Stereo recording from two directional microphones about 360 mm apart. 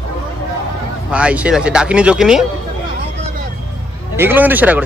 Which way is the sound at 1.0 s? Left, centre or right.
Centre.